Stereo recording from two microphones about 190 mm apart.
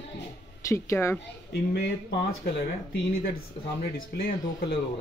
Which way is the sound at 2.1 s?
55° left (ahead or behind).